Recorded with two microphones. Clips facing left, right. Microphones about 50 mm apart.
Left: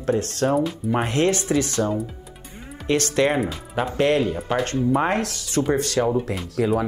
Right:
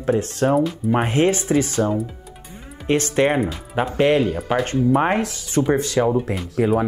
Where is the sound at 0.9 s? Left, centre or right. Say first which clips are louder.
Right 2 dB; centre.